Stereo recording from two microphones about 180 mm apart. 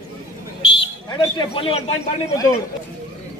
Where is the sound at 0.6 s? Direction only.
25° left (ahead or behind).